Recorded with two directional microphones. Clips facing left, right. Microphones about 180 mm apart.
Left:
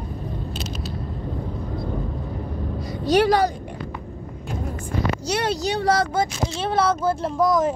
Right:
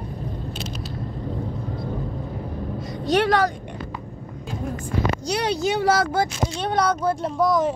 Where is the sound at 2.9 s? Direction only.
Centre (ahead or behind).